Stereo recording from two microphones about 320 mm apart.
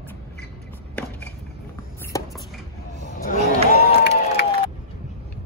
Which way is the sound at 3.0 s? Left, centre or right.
Left.